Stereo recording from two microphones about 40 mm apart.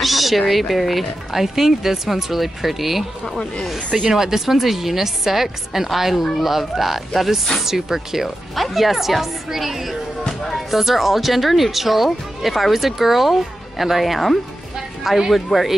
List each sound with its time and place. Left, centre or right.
0.0 s cat: centre
0.5 s speech: centre
4.1 s speech: centre
10.2 s music: centre
10.7 s speech: centre